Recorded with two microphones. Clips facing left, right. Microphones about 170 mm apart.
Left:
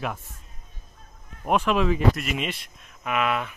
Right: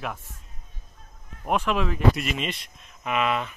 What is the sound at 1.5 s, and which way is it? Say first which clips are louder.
Speech: left 3 dB; 10° left (ahead or behind).